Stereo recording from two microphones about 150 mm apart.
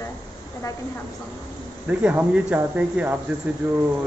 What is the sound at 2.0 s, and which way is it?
Speech, 10° right (ahead or behind).